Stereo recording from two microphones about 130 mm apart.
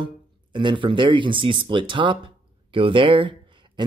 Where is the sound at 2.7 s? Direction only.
40° right (ahead or behind).